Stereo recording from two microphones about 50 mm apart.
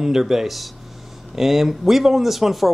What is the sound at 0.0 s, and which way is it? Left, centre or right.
Speech, centre.